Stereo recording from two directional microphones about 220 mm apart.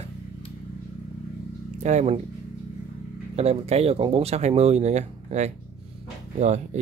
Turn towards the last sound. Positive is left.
turn(degrees=-30)  # may be behind; listen again after turning